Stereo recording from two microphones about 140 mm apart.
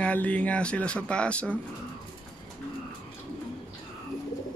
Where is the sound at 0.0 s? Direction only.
10° left (ahead or behind).